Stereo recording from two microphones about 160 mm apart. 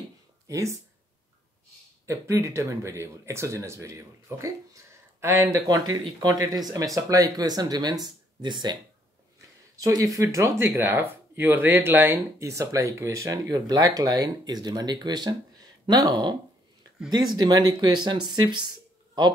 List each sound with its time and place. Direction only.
0.5 s speech: 20° right (ahead or behind)
2.0 s speech: 20° right (ahead or behind)
9.8 s speech: 20° right (ahead or behind)